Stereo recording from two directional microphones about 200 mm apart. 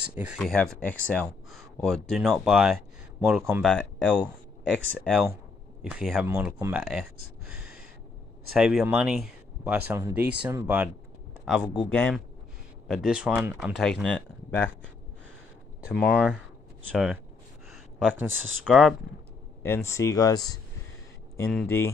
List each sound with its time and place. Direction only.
0.0 s speech: 5° right (ahead or behind)
6.2 s speech: 15° right (ahead or behind)
8.5 s speech: centre (ahead or behind)
11.9 s speech: 10° left (ahead or behind)
12.8 s speech: centre (ahead or behind)
15.9 s speech: centre (ahead or behind)
17.6 s a sound: centre (ahead or behind)
18.2 s speech: 5° right (ahead or behind)
19.6 s speech: 15° left (ahead or behind)
21.5 s speech: 10° left (ahead or behind)